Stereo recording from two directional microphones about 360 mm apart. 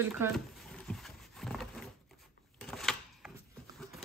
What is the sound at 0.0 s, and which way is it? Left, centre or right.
Speech, centre.